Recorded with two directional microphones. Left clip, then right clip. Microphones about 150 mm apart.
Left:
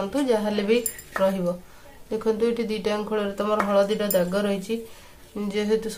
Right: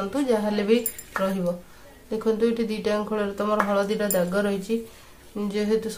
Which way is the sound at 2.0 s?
20° left (ahead or behind).